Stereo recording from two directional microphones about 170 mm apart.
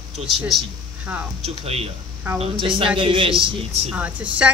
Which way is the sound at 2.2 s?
10° right (ahead or behind).